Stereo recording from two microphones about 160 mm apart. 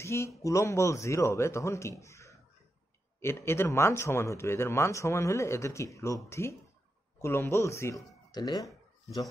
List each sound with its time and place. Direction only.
0.0 s a man's voice: 15° left (ahead or behind)